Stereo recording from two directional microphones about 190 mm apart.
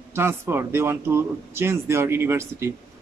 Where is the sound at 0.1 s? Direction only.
10° right (ahead or behind).